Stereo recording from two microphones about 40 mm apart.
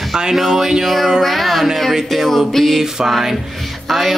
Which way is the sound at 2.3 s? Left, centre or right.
Centre.